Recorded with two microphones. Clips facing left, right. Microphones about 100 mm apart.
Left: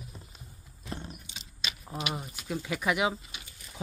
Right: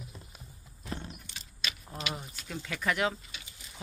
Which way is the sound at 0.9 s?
15° left (ahead or behind).